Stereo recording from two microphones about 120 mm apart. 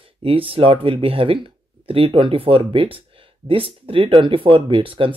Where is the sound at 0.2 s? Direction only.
50° right (ahead or behind).